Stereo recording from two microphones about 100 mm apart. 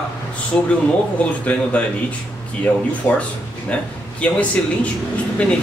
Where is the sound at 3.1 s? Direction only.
15° left (ahead or behind).